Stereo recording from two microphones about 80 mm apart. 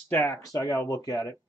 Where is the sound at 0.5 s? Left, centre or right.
Left.